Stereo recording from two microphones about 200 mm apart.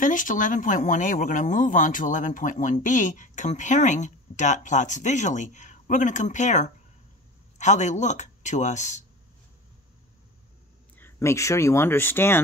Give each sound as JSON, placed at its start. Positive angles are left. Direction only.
{"t": 0.0, "sound": "speech", "side_deg": 40}
{"t": 11.0, "sound": "speech", "side_deg": 10}